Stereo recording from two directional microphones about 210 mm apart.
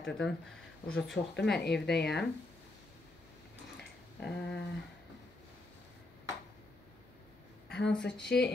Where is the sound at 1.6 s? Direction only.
50° left (ahead or behind).